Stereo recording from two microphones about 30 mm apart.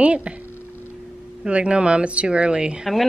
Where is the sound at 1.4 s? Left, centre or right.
Right.